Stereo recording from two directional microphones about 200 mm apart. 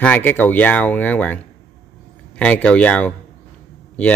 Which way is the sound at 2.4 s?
5° left (ahead or behind).